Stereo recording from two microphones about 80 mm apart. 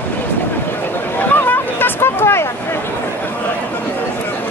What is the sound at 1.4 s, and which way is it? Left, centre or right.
Vehicle, left.